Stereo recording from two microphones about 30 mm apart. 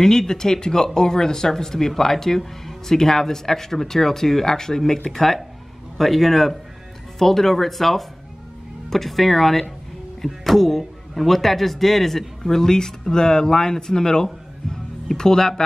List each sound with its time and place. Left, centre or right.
0.0 s speech: centre